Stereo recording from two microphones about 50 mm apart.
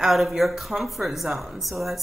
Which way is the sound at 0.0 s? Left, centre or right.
Centre.